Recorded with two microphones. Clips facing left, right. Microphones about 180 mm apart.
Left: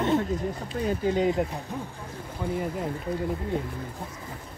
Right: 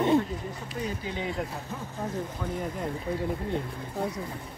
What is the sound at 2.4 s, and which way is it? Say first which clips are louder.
Speech: left 8 dB; 10° left (ahead or behind).